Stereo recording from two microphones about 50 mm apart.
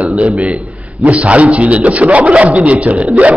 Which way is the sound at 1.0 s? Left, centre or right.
Right.